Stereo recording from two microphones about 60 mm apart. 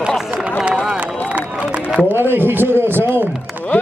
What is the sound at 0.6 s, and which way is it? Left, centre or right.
Run, centre.